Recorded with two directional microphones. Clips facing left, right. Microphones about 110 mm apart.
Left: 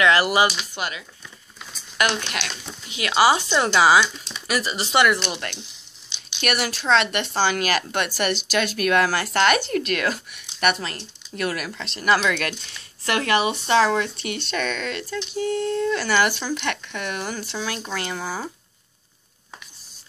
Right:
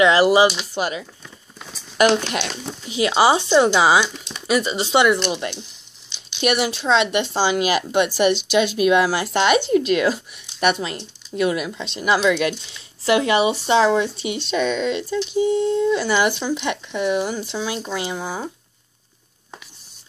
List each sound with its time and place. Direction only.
0.0 s speech: 25° right (ahead or behind)
0.7 s speech: 35° right (ahead or behind); by 18.5 s 15° right (ahead or behind)